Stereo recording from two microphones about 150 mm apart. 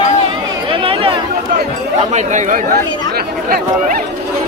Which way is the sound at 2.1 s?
55° right (ahead or behind).